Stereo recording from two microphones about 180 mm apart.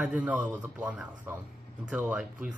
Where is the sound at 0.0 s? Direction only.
5° right (ahead or behind).